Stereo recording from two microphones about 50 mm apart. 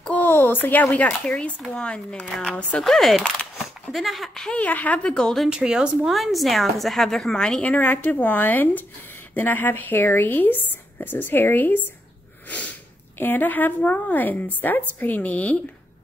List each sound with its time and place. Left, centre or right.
0.3 s a sound: left
1.7 s a woman's voice: left
2.8 s a woman's voice: centre
4.5 s a woman's voice: left
5.1 s speech: centre
5.5 s speech: centre
6.0 s a woman's voice: centre
7.6 s a woman's voice: left
13.2 s a woman's voice: left